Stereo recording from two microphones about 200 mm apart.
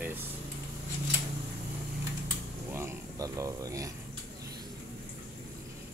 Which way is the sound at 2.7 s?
15° right (ahead or behind).